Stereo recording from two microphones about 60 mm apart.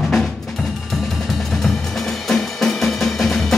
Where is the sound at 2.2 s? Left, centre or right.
Centre.